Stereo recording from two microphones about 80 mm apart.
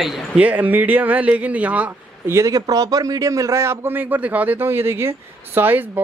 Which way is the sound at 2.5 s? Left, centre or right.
Right.